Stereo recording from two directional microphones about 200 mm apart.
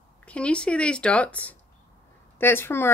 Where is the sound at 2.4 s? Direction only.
10° left (ahead or behind).